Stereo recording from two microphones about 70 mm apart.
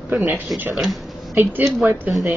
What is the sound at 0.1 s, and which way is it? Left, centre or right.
Speech, right.